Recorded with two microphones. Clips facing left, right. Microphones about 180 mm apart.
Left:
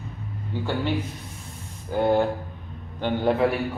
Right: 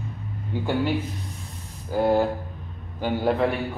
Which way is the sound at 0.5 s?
15° right (ahead or behind).